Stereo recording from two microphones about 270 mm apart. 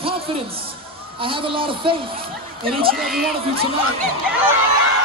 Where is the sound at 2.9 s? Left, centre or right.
Centre.